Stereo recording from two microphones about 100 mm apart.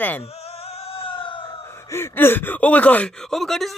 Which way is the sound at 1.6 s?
25° left (ahead or behind).